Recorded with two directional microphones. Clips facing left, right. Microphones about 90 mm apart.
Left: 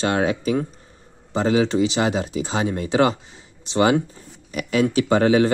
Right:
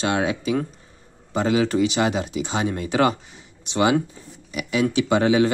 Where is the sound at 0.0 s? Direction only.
35° left (ahead or behind).